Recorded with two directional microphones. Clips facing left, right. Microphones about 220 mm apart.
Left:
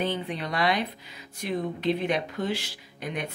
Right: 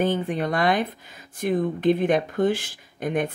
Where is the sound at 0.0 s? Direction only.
50° right (ahead or behind).